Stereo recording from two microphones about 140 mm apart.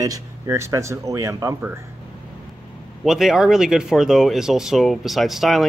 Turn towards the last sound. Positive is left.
turn(degrees=0)  # may be behind; listen again after turning